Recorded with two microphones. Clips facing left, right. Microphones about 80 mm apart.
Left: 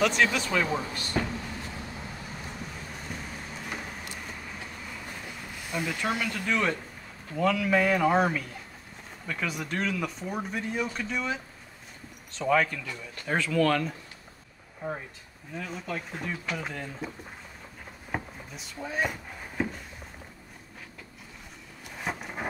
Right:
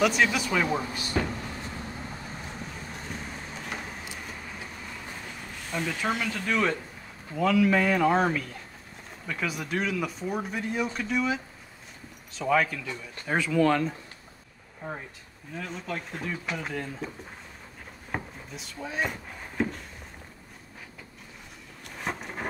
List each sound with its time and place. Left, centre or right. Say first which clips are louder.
0.0 s speech: right 1 dB; centre
3.3 s vehicle: right 1 dB; centre
7.3 s speech: right 2 dB; centre
12.4 s speech: even; centre
13.3 s speech: right 1 dB; centre
14.8 s speech: left 2 dB; centre
18.1 s a sound: even; centre
21.8 s a sound: even; centre